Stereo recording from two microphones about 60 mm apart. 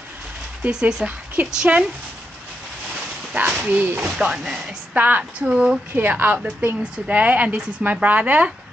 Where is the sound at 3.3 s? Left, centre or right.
Right.